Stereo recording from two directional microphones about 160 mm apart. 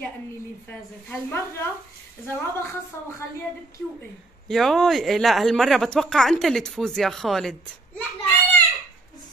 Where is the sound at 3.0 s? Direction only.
15° left (ahead or behind).